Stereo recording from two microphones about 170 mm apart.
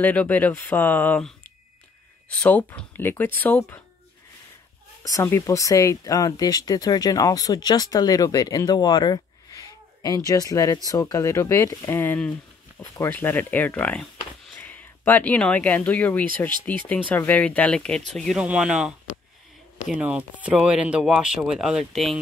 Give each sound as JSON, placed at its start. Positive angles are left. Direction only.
{"t": 0.0, "sound": "speech", "side_deg": 10}
{"t": 5.0, "sound": "speech", "side_deg": 20}